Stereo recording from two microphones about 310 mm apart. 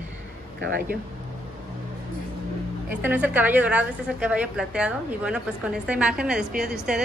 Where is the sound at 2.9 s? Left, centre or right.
Centre.